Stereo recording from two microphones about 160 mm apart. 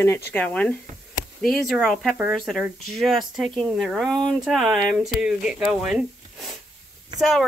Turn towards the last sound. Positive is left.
turn(degrees=0)  # may be behind; listen again after turning